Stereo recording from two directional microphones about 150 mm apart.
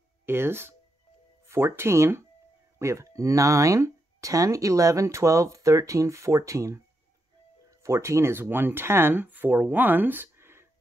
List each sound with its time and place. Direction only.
0.2 s speech: 15° right (ahead or behind)